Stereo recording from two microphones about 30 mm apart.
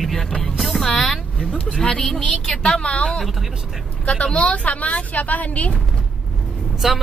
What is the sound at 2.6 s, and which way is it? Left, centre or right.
Speech, left.